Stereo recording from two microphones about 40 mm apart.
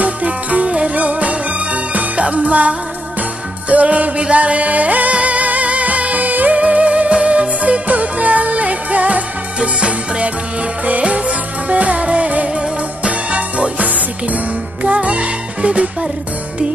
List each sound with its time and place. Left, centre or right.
0.0 s music: right
6.6 s music: right